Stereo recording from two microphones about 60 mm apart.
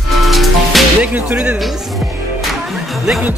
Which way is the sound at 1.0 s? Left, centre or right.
Right.